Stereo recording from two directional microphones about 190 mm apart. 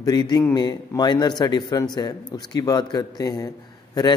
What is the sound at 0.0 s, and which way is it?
Speech, 20° left (ahead or behind).